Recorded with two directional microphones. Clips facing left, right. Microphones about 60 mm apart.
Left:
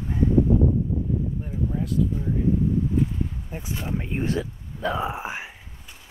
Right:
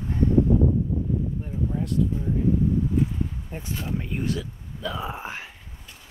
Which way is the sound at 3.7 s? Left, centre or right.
Centre.